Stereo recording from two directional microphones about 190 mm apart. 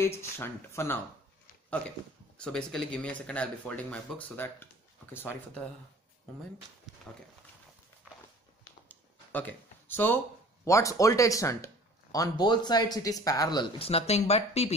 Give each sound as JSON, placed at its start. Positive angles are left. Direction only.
{"t": 0.0, "sound": "speech", "side_deg": 15}
{"t": 6.9, "sound": "a sound", "side_deg": 0}
{"t": 8.8, "sound": "speech", "side_deg": 10}